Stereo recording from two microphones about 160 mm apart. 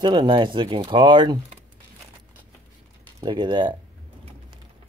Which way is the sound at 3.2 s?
30° right (ahead or behind).